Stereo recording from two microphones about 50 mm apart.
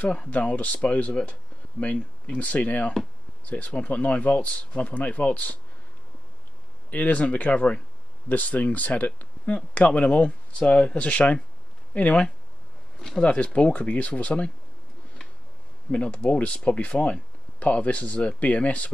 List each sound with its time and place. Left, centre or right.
0.3 s speech: left
6.9 s speech: left
10.6 s speech: centre
15.9 s speech: left